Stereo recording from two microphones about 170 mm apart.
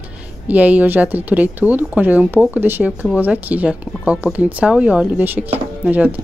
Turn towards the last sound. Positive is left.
turn(degrees=-10)  # may be behind; listen again after turning